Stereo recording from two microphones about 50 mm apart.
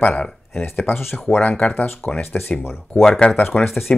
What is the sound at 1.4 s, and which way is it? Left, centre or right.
Speech, left.